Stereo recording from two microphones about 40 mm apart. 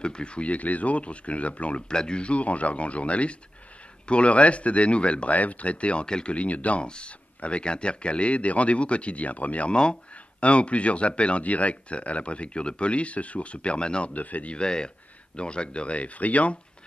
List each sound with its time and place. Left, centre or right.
0.0 s speech: left
1.9 s speech: left
6.3 s speech: left
14.1 s speech: left
14.6 s speech: left